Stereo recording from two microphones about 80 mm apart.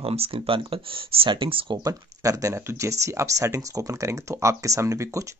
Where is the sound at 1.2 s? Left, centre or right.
Right.